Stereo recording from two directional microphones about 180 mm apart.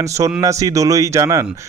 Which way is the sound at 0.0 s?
15° right (ahead or behind).